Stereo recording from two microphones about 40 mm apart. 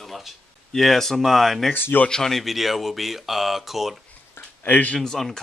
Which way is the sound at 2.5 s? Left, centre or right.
Centre.